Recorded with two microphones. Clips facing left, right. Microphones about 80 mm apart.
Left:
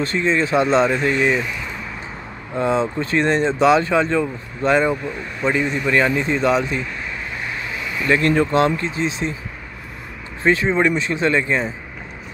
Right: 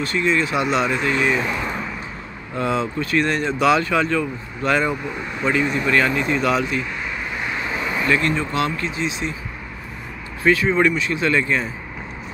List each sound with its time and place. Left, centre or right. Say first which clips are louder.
0.0 s speech: left 1 dB; left
2.5 s speech: left 3 dB; left
7.7 s a sound: right 3 dB; right
8.1 s speech: left 5 dB; left
8.5 s speech: left 5 dB; left
10.4 s speech: even; left